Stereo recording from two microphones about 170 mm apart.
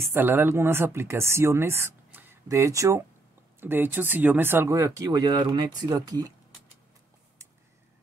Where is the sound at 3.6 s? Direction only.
10° right (ahead or behind).